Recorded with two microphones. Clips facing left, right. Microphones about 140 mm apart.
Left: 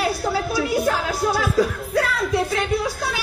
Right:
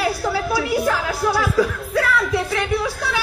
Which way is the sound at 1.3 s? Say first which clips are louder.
Right 1 dB; 45° left (ahead or behind).